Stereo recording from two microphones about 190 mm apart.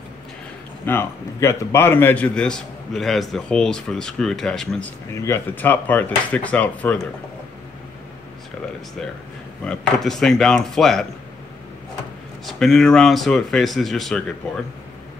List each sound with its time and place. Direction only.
0.8 s a man's voice: 10° left (ahead or behind)
5.1 s speech: 15° left (ahead or behind)
9.7 s a man's voice: centre (ahead or behind)
12.4 s a man's voice: centre (ahead or behind)